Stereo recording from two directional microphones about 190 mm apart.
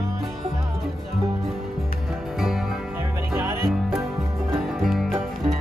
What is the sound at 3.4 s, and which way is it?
Music, 15° right (ahead or behind).